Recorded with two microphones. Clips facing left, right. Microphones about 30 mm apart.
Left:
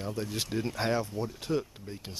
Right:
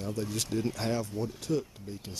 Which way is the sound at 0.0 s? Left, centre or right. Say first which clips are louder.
Even; centre.